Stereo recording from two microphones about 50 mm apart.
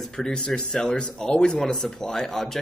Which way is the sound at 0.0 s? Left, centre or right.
Centre.